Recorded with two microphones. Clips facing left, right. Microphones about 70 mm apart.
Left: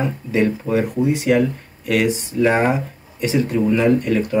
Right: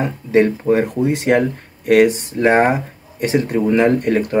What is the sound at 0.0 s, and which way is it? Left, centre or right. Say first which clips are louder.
Speech: right 4 dB; right.